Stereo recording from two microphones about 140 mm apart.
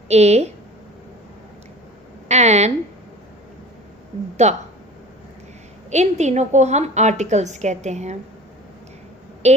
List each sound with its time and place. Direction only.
0.1 s a woman's voice: 50° right (ahead or behind)
2.2 s a woman's voice: 55° right (ahead or behind)
4.4 s a woman's voice: 55° right (ahead or behind)
5.9 s a woman's voice: 55° right (ahead or behind)